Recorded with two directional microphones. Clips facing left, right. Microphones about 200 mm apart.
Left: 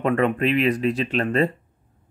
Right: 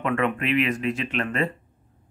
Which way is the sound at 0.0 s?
35° left (ahead or behind).